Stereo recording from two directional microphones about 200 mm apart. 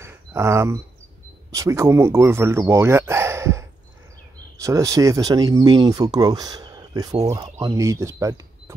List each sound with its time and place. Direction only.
0.0 s a sound: 15° right (ahead or behind)
1.5 s speech: 15° right (ahead or behind)
7.2 s speech: 30° right (ahead or behind)
7.5 s speech: 15° right (ahead or behind)